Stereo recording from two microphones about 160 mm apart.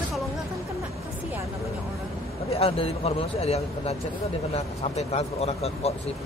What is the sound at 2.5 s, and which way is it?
Speech, 40° left (ahead or behind).